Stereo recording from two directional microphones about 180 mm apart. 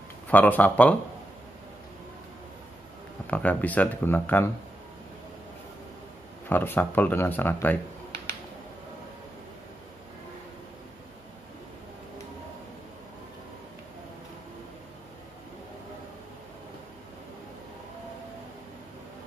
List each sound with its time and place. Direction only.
0.3 s speech: 10° left (ahead or behind)
3.3 s speech: 10° left (ahead or behind)
6.5 s speech: 10° left (ahead or behind)